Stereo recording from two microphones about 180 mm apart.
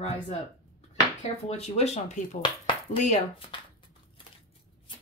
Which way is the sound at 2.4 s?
25° left (ahead or behind).